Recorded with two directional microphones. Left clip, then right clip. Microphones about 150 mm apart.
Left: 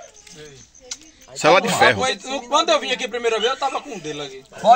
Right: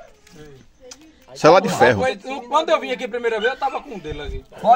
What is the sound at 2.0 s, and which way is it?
A man's voice, 25° left (ahead or behind).